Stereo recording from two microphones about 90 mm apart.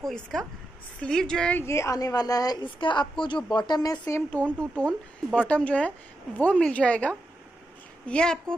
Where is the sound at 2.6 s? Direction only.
65° left (ahead or behind); by 4.0 s 50° left (ahead or behind).